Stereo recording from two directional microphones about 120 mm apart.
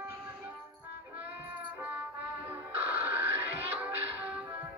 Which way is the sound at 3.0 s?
20° right (ahead or behind).